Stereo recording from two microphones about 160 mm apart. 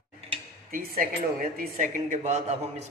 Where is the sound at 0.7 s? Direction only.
65° right (ahead or behind).